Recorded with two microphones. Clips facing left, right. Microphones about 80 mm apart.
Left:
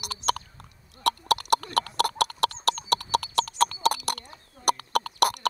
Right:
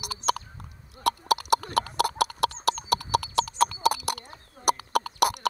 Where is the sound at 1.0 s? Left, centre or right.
Centre.